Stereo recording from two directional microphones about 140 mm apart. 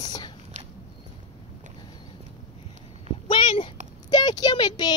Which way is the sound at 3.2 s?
40° left (ahead or behind).